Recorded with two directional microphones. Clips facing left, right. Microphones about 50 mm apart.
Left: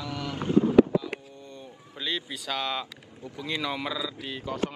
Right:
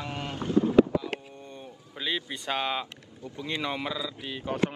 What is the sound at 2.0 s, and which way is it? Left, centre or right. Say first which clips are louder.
Speech: right 1 dB; centre.